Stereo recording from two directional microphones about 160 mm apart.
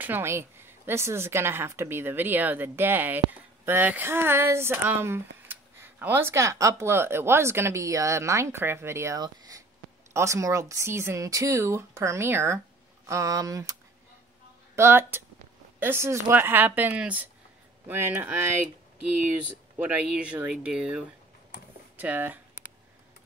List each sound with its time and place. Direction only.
0.0 s a woman's voice: 15° right (ahead or behind)
14.8 s a woman's voice: 15° right (ahead or behind)
19.8 s a woman's voice: 10° right (ahead or behind)